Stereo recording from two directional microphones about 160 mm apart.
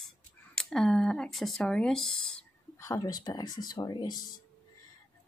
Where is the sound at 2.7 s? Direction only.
20° left (ahead or behind).